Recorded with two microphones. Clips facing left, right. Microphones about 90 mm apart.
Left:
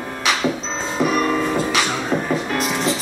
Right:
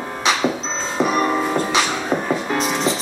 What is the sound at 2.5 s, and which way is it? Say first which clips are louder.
Music: right 1 dB; 20° right (ahead or behind).